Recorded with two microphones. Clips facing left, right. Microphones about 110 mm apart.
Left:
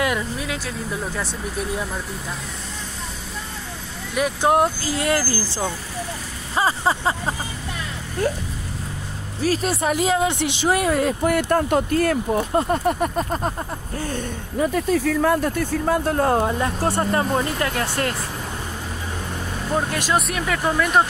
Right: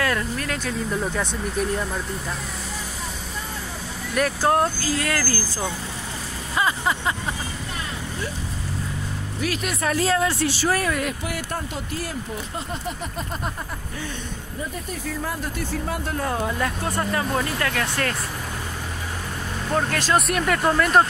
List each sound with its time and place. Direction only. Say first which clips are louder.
0.0 s speech: left 1 dB; 10° left (ahead or behind)
4.4 s speech: left 4 dB; 20° left (ahead or behind)
6.5 s vehicle: left 3 dB; 30° left (ahead or behind)
9.4 s vehicle: left 6 dB; 35° left (ahead or behind)
9.8 s speech: left 1 dB; 15° left (ahead or behind)
11.2 s speech: left 11 dB; 55° left (ahead or behind)
14.6 s speech: left 12 dB; 90° left; by 15.5 s 75° left (ahead or behind)
15.7 s speech: left 7 dB; 45° left (ahead or behind)
16.5 s speech: left 4 dB; 30° left (ahead or behind)
19.7 s speech: even; 10° left (ahead or behind)
20.2 s speech: right 1 dB; centre (ahead or behind)